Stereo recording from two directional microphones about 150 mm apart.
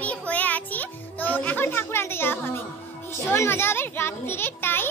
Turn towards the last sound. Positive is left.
turn(degrees=15)  # may be behind; listen again after turning